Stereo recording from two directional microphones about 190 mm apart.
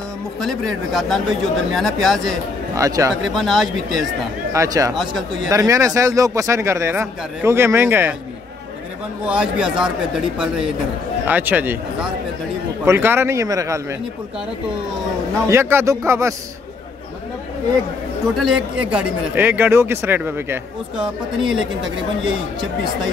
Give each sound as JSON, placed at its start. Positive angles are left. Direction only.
{"t": 0.4, "sound": "speech", "side_deg": 0}
{"t": 2.7, "sound": "a man's voice", "side_deg": -15}
{"t": 3.1, "sound": "speech", "side_deg": 0}
{"t": 4.5, "sound": "speech", "side_deg": -15}
{"t": 4.9, "sound": "speech", "side_deg": 0}
{"t": 5.5, "sound": "a man's voice", "side_deg": -15}
{"t": 9.2, "sound": "a man's voice", "side_deg": -5}
{"t": 15.4, "sound": "a man's voice", "side_deg": -15}
{"t": 18.2, "sound": "a man's voice", "side_deg": 0}